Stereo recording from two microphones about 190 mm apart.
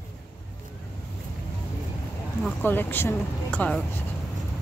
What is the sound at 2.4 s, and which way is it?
Speech, 10° left (ahead or behind).